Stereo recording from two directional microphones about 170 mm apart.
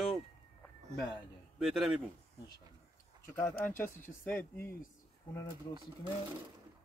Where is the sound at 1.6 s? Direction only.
Centre (ahead or behind).